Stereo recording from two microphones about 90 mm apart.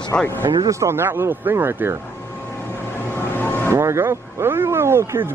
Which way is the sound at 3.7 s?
30° right (ahead or behind).